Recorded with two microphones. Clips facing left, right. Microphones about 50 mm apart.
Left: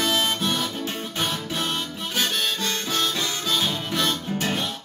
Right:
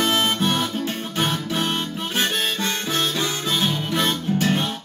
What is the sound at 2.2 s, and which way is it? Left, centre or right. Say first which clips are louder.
Harmonica: right 2 dB; right.